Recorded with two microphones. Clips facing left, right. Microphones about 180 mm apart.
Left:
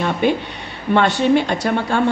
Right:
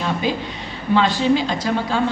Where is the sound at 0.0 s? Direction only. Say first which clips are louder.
Left 4 dB; 60° left (ahead or behind).